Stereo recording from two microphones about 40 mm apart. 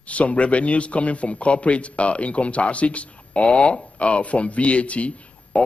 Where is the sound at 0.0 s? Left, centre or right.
Left.